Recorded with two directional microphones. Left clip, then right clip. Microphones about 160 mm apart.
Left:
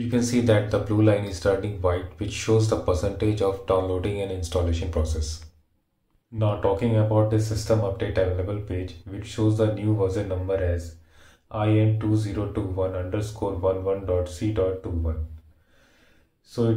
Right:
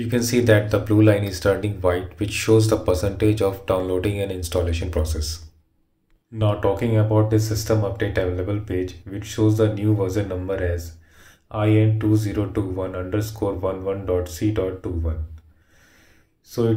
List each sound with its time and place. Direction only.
0.1 s speech: 10° right (ahead or behind)